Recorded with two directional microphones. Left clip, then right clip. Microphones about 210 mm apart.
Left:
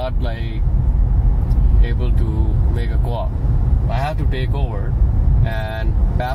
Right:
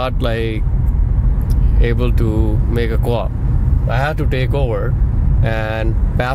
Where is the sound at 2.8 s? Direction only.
60° right (ahead or behind).